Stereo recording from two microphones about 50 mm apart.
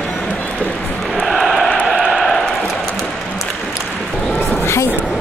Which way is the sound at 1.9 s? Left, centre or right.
Centre.